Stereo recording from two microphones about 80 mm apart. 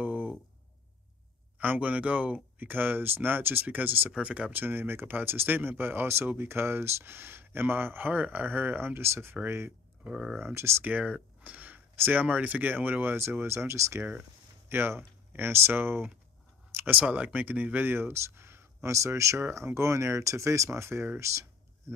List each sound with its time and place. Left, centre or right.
0.0 s a sound: right
1.6 s speech: centre
10.0 s speech: centre
10.4 s speech: right
10.8 s speech: right
16.7 s a sound: right
17.0 s speech: centre; by 21.5 s right